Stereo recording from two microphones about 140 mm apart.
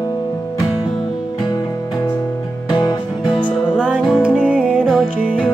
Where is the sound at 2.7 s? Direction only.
30° left (ahead or behind).